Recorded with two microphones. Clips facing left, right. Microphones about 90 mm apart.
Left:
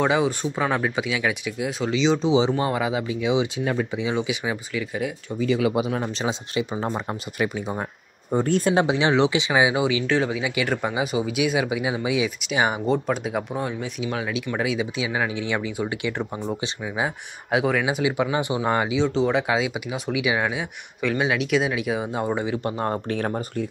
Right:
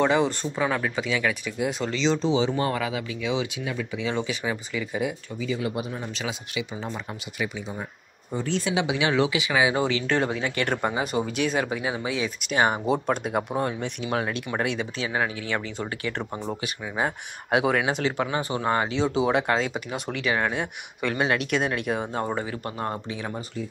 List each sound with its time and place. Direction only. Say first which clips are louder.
0.0 s speech: left 1 dB; 5° left (ahead or behind)
2.4 s speech: left 2 dB; 25° left (ahead or behind)
4.0 s speech: left 2 dB; 10° left (ahead or behind)
5.4 s speech: left 7 dB; 75° left (ahead or behind)
6.2 s speech: left 6 dB; 40° left (ahead or behind)
8.8 s speech: left 3 dB; 30° left (ahead or behind); by 10.0 s 15° left (ahead or behind)
10.0 s speech: left 2 dB; centre (ahead or behind)
17.8 s speech: left 3 dB; 10° left (ahead or behind)
18.9 s speech: left 2 dB; 5° right (ahead or behind); by 22.9 s 30° left (ahead or behind)
23.0 s speech: left 7 dB; 55° left (ahead or behind)